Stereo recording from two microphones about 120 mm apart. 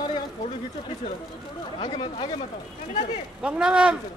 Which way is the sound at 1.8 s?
65° left (ahead or behind).